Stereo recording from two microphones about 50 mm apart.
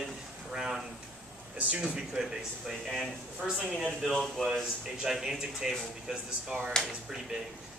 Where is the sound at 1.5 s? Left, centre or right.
Right.